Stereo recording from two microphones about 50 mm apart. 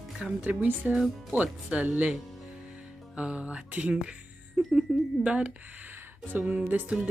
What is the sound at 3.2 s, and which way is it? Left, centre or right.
Speech, right.